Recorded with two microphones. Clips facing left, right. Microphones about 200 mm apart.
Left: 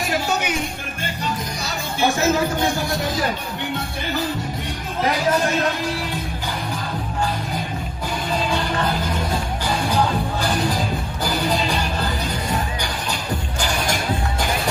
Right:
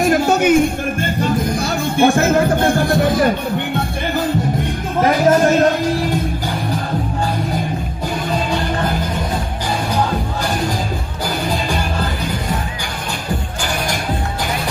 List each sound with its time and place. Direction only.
0.0 s music: 50° right (ahead or behind)
2.0 s speech: 55° right (ahead or behind)